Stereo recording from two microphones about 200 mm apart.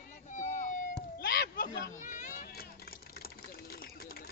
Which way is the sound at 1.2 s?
55° left (ahead or behind).